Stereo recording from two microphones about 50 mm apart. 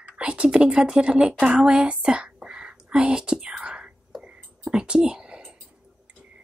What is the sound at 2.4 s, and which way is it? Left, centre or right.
Whispering, centre.